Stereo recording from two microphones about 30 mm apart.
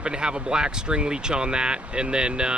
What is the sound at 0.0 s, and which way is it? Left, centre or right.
Speech, right.